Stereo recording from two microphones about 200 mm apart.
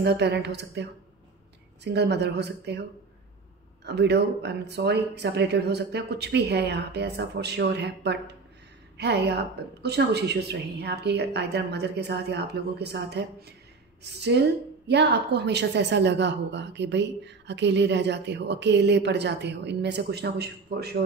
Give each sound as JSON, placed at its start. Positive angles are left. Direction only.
{"t": 0.0, "sound": "a woman's voice", "side_deg": -55}
{"t": 1.9, "sound": "a woman's voice", "side_deg": -55}
{"t": 3.8, "sound": "a woman's voice", "side_deg": -60}
{"t": 14.2, "sound": "a woman's voice", "side_deg": -55}